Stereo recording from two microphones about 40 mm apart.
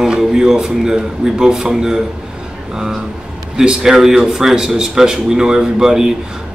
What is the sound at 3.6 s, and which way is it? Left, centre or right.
A man's voice, centre.